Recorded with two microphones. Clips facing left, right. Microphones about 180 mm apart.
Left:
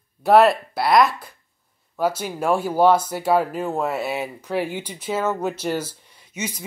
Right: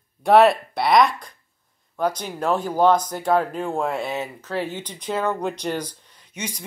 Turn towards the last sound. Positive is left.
turn(degrees=10)  # may be behind; listen again after turning